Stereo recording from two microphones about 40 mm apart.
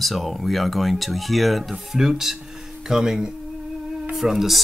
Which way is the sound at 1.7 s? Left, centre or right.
Centre.